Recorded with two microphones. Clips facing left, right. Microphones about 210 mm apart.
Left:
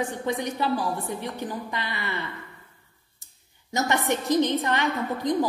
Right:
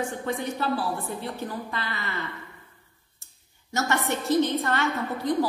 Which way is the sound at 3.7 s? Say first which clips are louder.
Left 2 dB; 15° left (ahead or behind).